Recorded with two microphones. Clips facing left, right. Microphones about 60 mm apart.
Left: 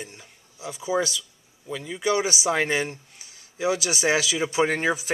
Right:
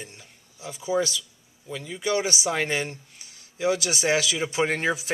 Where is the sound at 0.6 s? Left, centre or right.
Centre.